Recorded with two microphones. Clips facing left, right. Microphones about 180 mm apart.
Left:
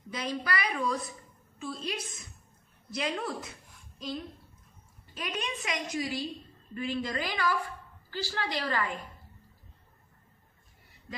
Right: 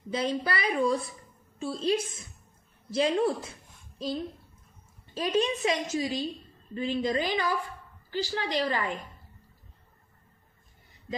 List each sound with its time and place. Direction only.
0.1 s a woman's voice: 30° right (ahead or behind)
5.1 s a woman's voice: 25° right (ahead or behind)